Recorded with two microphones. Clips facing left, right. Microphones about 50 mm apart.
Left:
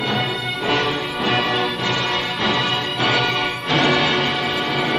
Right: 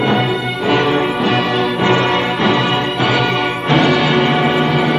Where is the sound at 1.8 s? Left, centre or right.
Centre.